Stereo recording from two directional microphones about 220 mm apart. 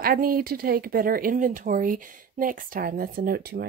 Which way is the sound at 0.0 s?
40° right (ahead or behind).